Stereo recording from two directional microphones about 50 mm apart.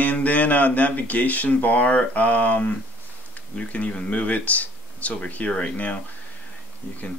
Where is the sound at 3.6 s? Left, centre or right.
Left.